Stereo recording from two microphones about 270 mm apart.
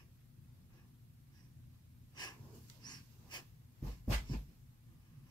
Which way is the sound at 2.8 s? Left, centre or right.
Centre.